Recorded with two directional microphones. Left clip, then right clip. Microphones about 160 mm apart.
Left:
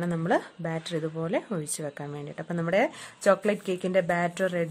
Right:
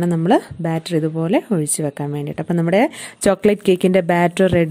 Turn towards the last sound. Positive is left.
turn(degrees=-45)  # may be behind; listen again after turning